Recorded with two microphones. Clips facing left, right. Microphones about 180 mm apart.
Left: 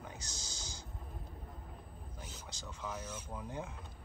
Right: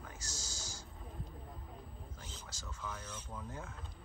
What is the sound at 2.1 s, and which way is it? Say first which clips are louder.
Speech: left 2 dB; 15° left (ahead or behind).